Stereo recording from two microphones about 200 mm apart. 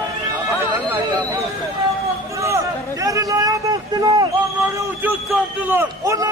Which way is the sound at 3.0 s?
20° right (ahead or behind).